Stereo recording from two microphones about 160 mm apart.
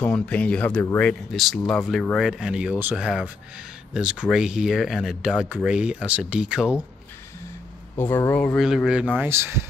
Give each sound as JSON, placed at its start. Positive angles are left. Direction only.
{"t": 0.0, "sound": "speech", "side_deg": 10}
{"t": 8.0, "sound": "speech", "side_deg": 10}
{"t": 8.5, "sound": "speech", "side_deg": -5}
{"t": 9.2, "sound": "speech", "side_deg": -15}